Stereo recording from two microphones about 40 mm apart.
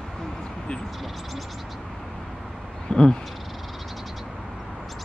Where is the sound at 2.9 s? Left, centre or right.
Centre.